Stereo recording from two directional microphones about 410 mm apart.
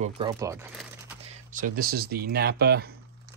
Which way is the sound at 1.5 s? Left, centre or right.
Centre.